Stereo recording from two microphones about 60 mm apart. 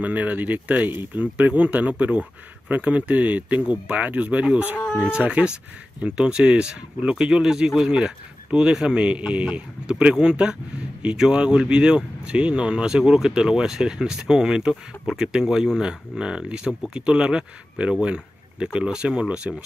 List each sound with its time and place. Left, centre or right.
0.0 s speech: right
4.8 s speech: centre
5.2 s speech: centre